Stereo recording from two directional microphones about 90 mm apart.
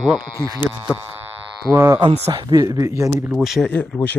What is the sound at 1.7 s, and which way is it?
Speech, 30° right (ahead or behind).